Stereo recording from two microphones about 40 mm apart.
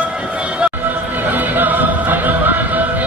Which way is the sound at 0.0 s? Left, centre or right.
Right.